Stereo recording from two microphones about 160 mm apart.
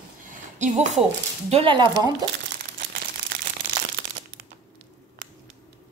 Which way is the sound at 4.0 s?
90° right.